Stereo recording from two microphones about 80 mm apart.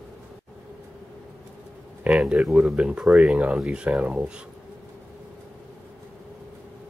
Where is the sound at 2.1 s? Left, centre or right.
Centre.